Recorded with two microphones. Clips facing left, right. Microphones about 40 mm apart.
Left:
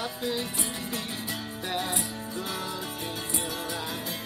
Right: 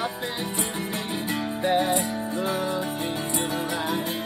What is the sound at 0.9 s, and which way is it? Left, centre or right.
Music, right.